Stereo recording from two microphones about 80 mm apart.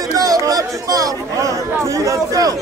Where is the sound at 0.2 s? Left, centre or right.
Right.